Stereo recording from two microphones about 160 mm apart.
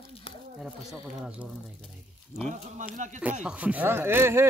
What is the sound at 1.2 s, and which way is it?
Speech, 10° right (ahead or behind).